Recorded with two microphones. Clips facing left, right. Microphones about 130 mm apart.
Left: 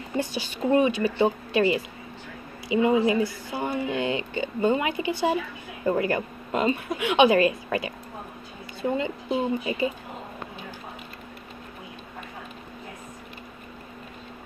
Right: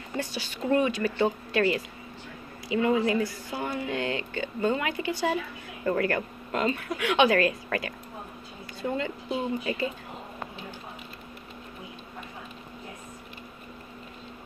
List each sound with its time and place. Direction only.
0.2 s speech: 20° left (ahead or behind)